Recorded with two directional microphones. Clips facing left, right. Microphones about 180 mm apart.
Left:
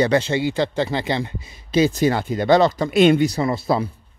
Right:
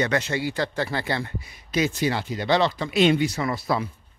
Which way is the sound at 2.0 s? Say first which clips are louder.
Left 6 dB; 50° left (ahead or behind).